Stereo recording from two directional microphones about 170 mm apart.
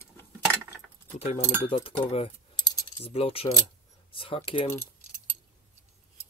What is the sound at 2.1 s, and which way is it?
Keys jangling, 30° left (ahead or behind).